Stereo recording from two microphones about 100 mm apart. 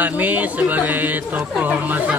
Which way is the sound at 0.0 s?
15° right (ahead or behind).